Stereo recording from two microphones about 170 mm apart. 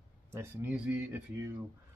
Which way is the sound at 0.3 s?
15° right (ahead or behind).